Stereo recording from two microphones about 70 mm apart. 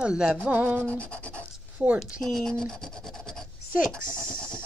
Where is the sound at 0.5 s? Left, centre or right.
Right.